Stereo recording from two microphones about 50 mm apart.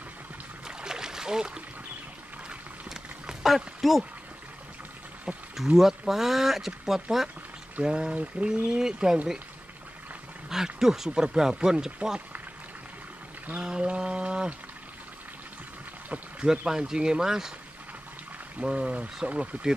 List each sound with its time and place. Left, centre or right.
0.7 s a sound: centre
3.4 s speech: centre
5.6 s speech: centre
10.5 s speech: centre
13.6 s mantra: centre
16.4 s speech: centre
18.6 s mantra: right